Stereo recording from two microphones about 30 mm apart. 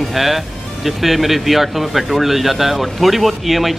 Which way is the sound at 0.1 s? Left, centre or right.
Centre.